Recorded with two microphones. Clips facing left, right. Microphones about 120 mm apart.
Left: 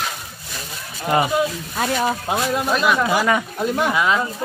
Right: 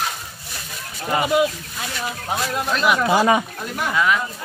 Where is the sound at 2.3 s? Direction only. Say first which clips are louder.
Left 3 dB; 15° left (ahead or behind).